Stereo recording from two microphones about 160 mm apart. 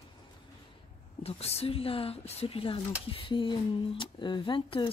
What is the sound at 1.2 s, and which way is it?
Speech, 40° left (ahead or behind).